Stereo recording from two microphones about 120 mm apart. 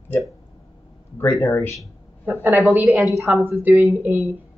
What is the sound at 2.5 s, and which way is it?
Speech, centre (ahead or behind).